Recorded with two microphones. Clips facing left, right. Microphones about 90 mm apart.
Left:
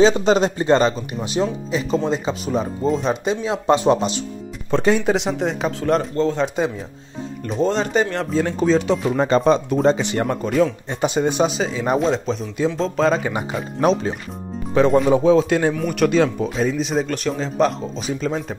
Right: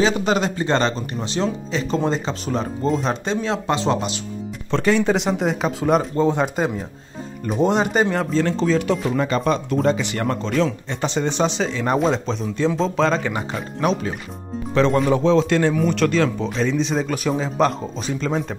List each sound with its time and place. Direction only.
0.0 s speech: 25° left (ahead or behind); by 3.6 s 10° left (ahead or behind)
3.6 s speech: 20° left (ahead or behind)
5.0 s speech: centre (ahead or behind)
7.4 s speech: 15° right (ahead or behind)
8.4 s speech: 10° left (ahead or behind)
10.2 s speech: 10° left (ahead or behind)
13.7 s speech: 30° left (ahead or behind)
14.7 s speech: 10° left (ahead or behind)